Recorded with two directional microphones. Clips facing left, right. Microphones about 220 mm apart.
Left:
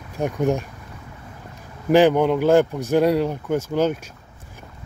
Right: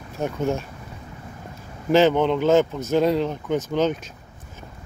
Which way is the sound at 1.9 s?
10° left (ahead or behind).